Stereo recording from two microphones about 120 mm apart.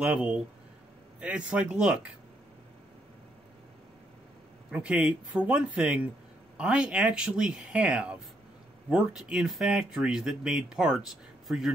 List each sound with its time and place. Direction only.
0.0 s speech: 10° right (ahead or behind)
4.6 s speech: 10° right (ahead or behind)